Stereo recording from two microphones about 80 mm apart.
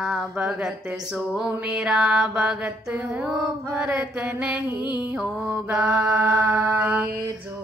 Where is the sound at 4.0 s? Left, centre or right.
Centre.